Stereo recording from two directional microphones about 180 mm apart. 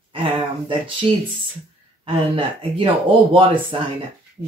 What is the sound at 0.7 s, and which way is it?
Speech, 25° right (ahead or behind).